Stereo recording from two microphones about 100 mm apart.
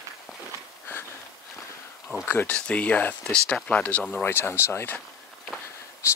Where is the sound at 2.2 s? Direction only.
20° left (ahead or behind).